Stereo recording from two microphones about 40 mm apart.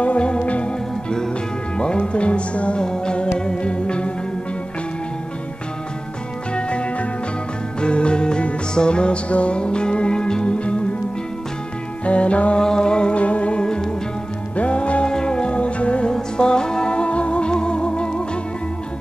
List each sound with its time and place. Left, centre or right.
0.0 s music: left
1.8 s music: left
6.5 s music: left
12.0 s music: left
12.5 s music: centre